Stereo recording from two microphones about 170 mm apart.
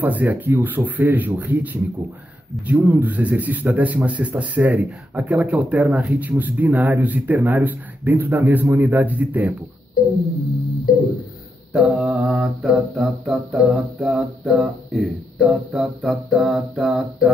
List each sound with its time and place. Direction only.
0.0 s speech: 10° right (ahead or behind)
10.9 s music: 55° left (ahead or behind)
11.7 s mantra: 5° right (ahead or behind)